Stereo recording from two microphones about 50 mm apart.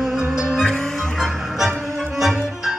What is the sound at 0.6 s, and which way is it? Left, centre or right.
Music, centre.